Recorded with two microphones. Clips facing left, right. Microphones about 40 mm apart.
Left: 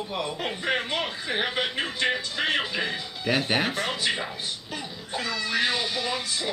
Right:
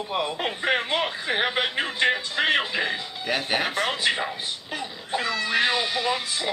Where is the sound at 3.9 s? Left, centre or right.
Centre.